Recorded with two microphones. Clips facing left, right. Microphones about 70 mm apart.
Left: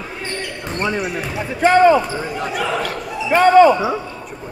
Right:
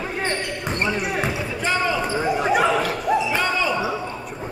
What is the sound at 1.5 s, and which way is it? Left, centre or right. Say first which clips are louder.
Speech: left 13 dB; left.